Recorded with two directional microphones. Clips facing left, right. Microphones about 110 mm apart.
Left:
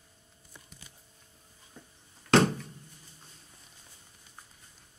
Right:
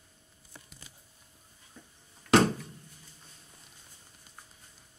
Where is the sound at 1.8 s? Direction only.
15° left (ahead or behind).